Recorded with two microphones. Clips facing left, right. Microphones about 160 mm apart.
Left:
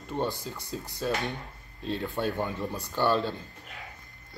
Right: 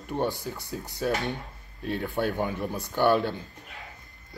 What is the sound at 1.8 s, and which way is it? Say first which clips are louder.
Speech: right 2 dB; 15° right (ahead or behind).